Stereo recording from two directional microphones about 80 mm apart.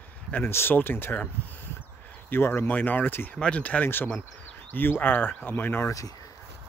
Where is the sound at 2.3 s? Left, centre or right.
Left.